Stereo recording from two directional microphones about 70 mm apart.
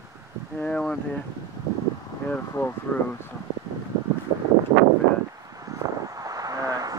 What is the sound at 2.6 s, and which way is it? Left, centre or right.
Speech, left.